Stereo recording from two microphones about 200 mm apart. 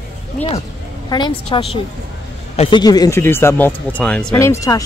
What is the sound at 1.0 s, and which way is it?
Speech, 20° left (ahead or behind).